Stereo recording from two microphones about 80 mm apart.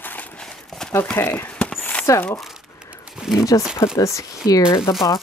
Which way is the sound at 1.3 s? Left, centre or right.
Left.